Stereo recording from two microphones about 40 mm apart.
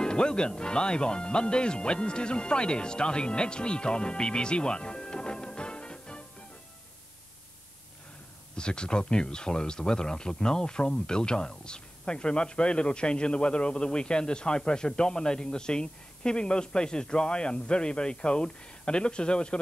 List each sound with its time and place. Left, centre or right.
0.0 s speech: left
8.5 s speech: left